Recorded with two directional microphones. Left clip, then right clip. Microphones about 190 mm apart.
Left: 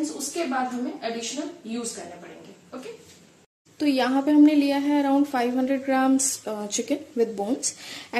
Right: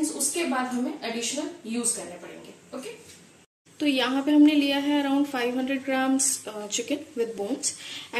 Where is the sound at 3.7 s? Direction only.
40° left (ahead or behind).